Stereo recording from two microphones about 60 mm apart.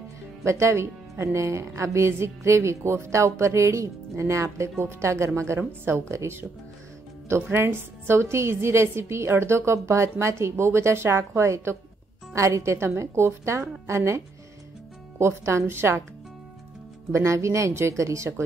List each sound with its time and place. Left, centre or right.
0.5 s speech: right
7.5 s speech: right
17.1 s speech: right